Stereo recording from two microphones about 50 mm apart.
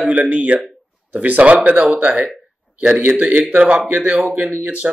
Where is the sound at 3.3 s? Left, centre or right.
Right.